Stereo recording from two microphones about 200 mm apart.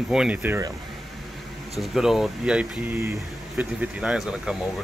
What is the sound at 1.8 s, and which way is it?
Speech, centre (ahead or behind).